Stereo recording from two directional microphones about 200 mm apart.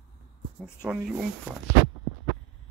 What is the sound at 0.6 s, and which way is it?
Speech, 5° right (ahead or behind).